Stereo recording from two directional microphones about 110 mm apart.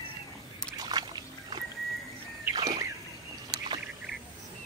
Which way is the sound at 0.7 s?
40° right (ahead or behind).